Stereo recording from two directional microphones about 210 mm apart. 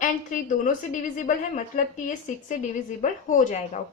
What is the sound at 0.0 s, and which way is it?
A woman's voice, 40° left (ahead or behind).